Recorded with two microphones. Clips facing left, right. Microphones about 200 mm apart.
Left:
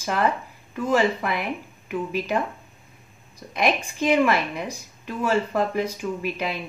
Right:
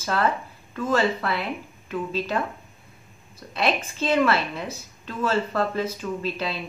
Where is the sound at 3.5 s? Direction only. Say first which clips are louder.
Left 1 dB; 15° left (ahead or behind).